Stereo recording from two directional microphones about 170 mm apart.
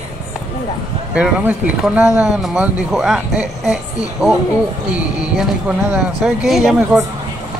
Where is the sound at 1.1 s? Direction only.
5° right (ahead or behind).